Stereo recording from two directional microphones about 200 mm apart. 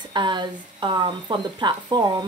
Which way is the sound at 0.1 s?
20° right (ahead or behind).